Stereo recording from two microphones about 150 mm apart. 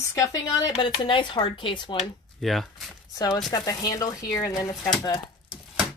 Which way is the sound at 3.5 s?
25° left (ahead or behind).